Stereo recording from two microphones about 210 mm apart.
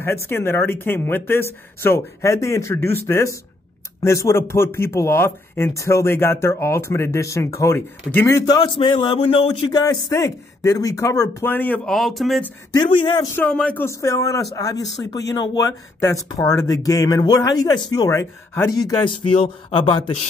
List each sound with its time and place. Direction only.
0.0 s a man's voice: 10° left (ahead or behind)
12.7 s speech: 20° left (ahead or behind)
13.4 s a man's voice: 5° left (ahead or behind); by 20.2 s 25° left (ahead or behind)